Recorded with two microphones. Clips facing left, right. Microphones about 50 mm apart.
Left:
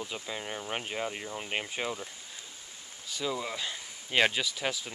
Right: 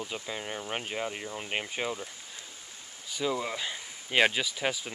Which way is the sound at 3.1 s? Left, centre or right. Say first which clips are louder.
Right 3 dB; centre.